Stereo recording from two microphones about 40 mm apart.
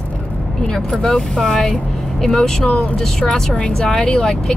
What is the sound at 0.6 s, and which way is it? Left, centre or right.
Speech, centre.